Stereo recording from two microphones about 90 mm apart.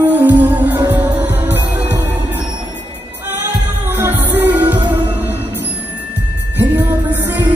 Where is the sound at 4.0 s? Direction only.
20° right (ahead or behind).